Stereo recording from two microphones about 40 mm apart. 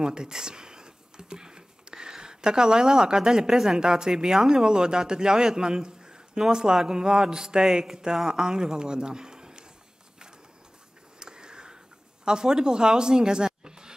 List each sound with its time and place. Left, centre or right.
0.0 s a man's voice: centre
11.1 s a sound: centre
12.3 s speech: centre